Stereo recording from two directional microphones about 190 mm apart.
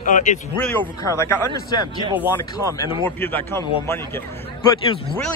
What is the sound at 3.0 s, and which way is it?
A man's voice, 10° left (ahead or behind).